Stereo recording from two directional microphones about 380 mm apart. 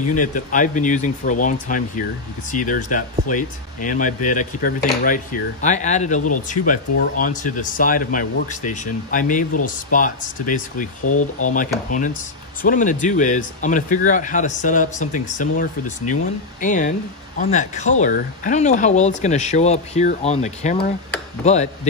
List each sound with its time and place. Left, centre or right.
0.1 s speech: centre
11.1 s speech: left
11.4 s speech: left